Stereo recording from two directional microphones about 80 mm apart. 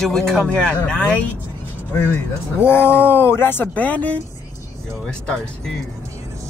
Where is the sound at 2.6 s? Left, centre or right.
Left.